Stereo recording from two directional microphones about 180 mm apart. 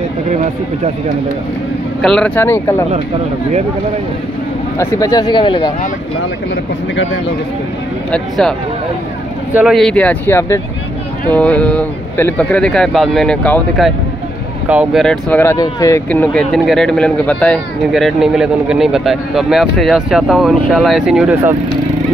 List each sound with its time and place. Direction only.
2.0 s speech: 5° left (ahead or behind)
4.7 s speech: 20° left (ahead or behind)
8.1 s speech: 5° left (ahead or behind)
9.5 s speech: 10° right (ahead or behind)
9.8 s speech: 5° left (ahead or behind)
16.1 s speech: 5° left (ahead or behind)